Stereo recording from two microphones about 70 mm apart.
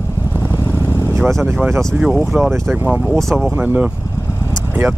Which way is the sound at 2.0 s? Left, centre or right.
Centre.